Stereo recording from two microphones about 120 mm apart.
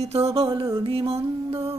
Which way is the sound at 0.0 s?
60° right (ahead or behind).